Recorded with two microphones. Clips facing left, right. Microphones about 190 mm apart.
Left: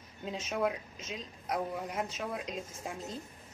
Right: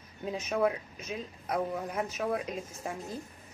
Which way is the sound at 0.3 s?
Centre (ahead or behind).